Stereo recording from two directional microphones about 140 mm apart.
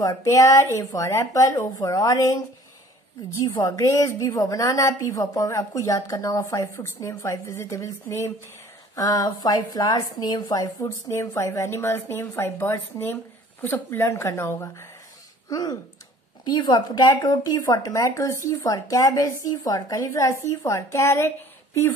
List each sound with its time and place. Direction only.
0.0 s a woman's voice: 25° left (ahead or behind)
3.4 s a woman's voice: 25° left (ahead or behind)
15.5 s a woman's voice: 30° left (ahead or behind)